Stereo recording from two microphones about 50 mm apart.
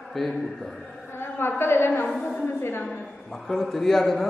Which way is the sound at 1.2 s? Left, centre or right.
Left.